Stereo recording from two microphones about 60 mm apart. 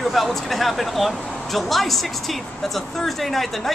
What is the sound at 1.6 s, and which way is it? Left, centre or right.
Speech, centre.